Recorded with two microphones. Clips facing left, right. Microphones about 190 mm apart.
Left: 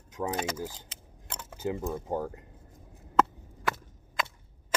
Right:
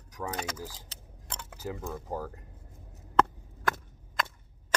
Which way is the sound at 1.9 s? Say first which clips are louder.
Left 4 dB; 25° left (ahead or behind).